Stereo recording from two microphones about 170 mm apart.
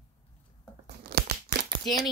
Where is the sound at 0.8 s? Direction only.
70° right (ahead or behind).